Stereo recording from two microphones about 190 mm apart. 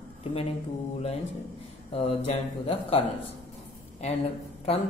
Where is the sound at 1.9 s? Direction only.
35° left (ahead or behind).